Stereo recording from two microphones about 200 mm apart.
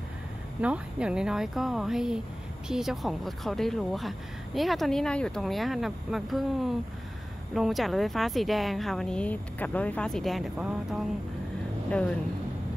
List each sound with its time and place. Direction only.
0.6 s speech: 5° right (ahead or behind)